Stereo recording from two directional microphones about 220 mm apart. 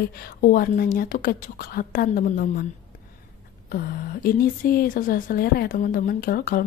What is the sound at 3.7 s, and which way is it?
Speech, 40° left (ahead or behind).